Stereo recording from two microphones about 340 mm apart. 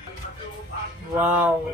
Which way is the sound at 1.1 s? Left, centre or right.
Centre.